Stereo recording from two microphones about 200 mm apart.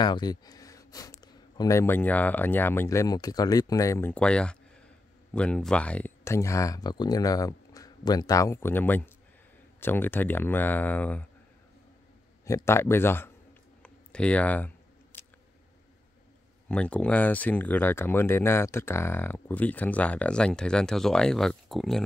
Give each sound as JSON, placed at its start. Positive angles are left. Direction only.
{"t": 0.0, "sound": "speech", "side_deg": 20}
{"t": 12.4, "sound": "speech", "side_deg": 15}
{"t": 16.6, "sound": "speech", "side_deg": 5}